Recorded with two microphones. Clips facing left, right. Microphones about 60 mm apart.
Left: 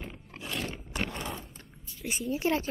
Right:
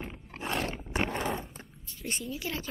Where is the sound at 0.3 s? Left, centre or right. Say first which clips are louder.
Right 4 dB; right.